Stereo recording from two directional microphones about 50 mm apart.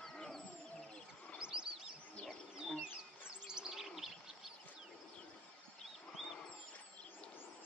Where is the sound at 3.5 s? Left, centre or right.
Centre.